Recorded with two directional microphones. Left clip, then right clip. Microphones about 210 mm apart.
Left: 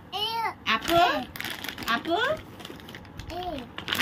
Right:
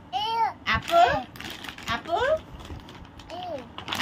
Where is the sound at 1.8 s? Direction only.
20° right (ahead or behind).